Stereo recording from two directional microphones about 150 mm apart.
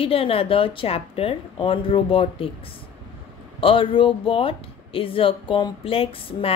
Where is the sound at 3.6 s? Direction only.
35° left (ahead or behind).